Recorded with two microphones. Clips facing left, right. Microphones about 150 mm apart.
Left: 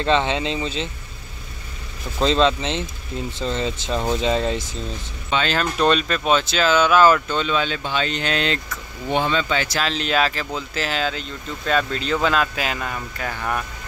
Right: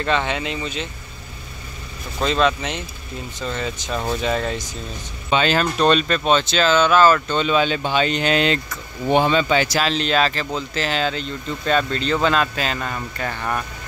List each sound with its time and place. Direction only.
0.0 s speech: 25° left (ahead or behind)
2.1 s speech: 25° left (ahead or behind)
5.3 s speech: 15° right (ahead or behind)
5.6 s speech: centre (ahead or behind)
7.4 s speech: 15° right (ahead or behind)
9.8 s speech: centre (ahead or behind)